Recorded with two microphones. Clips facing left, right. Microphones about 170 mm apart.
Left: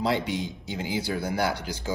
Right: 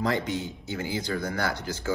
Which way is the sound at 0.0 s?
10° left (ahead or behind).